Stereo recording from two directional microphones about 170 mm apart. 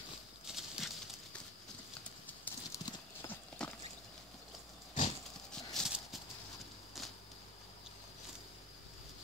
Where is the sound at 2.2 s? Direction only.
15° left (ahead or behind).